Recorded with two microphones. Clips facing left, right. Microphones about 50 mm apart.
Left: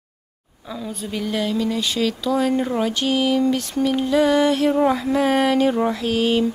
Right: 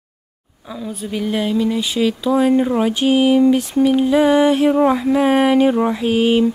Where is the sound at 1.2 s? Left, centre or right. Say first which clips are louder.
Right 4 dB; centre.